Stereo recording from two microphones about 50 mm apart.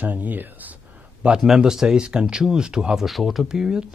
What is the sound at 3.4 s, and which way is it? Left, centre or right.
Speech, centre.